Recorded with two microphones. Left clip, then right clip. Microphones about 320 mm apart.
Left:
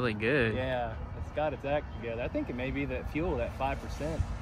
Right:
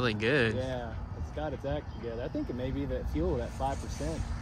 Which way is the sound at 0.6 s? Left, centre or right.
Left.